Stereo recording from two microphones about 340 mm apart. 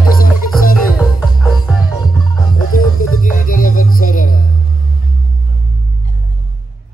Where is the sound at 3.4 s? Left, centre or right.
Left.